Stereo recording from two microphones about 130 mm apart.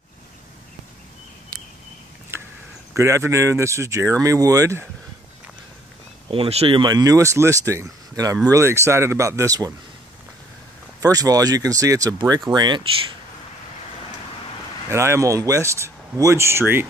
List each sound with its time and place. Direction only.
2.3 s a sound: 20° right (ahead or behind)
2.9 s speech: 20° right (ahead or behind)
6.3 s speech: 50° right (ahead or behind)
6.8 s speech: 30° right (ahead or behind)
11.0 s speech: 30° right (ahead or behind)
14.9 s speech: 20° right (ahead or behind)